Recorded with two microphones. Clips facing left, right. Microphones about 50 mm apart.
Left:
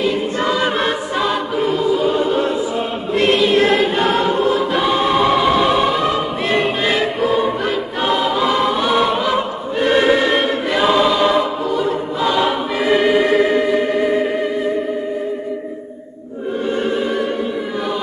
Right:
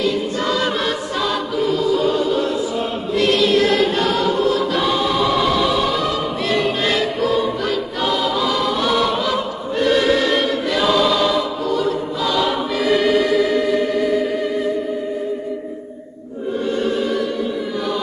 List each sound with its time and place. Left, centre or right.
0.0 s choir: left
5.0 s choir: left
13.3 s music: left